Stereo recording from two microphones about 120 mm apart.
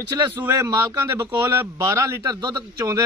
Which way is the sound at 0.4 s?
20° right (ahead or behind).